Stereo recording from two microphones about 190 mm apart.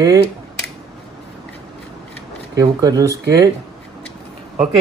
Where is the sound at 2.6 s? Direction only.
20° right (ahead or behind).